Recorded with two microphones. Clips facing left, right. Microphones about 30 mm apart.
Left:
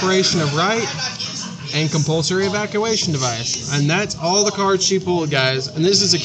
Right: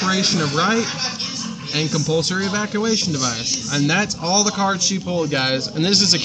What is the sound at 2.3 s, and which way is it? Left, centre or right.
Speech, left.